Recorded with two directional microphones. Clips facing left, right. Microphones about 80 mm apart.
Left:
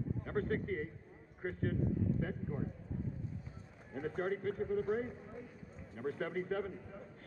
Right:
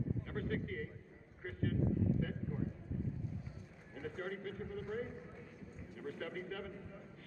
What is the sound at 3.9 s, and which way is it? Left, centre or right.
Speech, left.